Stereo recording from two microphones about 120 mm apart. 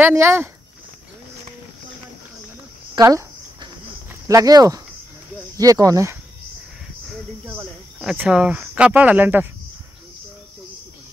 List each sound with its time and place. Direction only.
0.0 s speech: 20° right (ahead or behind)
3.0 s speech: 30° right (ahead or behind)
4.3 s speech: 30° right (ahead or behind)
8.0 s speech: 5° right (ahead or behind)